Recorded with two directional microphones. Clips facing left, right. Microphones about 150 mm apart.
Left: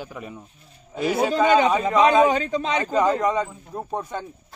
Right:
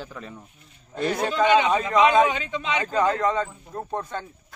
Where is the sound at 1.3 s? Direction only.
40° left (ahead or behind).